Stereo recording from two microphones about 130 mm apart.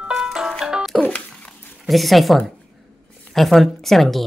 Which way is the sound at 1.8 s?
Centre (ahead or behind).